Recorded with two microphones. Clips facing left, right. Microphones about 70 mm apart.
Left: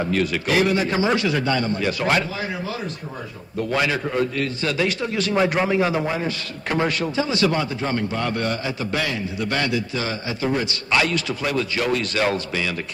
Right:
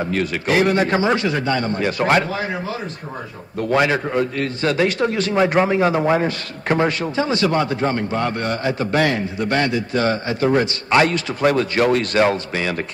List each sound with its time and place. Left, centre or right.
0.1 s a man's voice: right
5.6 s a man's voice: right
6.7 s a man's voice: right
7.2 s a man's voice: right
8.6 s a man's voice: right
9.4 s a man's voice: right